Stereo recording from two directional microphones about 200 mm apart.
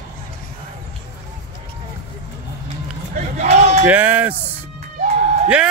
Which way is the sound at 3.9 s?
5° right (ahead or behind).